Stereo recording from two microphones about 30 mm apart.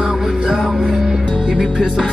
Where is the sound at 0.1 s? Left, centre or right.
Centre.